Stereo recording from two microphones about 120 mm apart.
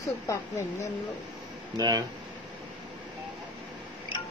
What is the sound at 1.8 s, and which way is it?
Speech, 30° right (ahead or behind).